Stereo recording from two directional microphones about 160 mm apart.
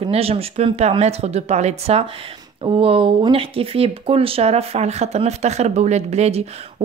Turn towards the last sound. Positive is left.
turn(degrees=-40)  # may be behind; listen again after turning